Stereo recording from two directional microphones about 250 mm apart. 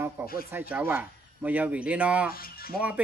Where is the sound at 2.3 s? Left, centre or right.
Left.